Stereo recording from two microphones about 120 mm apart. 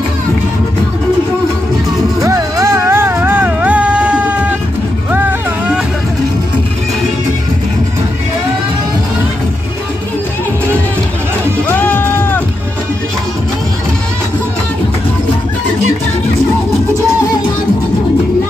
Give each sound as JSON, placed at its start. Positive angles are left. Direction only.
{"t": 2.2, "sound": "music", "side_deg": -25}
{"t": 11.6, "sound": "music", "side_deg": 15}